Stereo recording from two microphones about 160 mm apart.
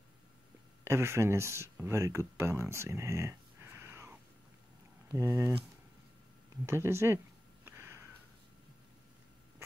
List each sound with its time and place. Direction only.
0.8 s speech: 15° right (ahead or behind)
6.6 s speech: 15° right (ahead or behind)
7.6 s a sound: 15° right (ahead or behind)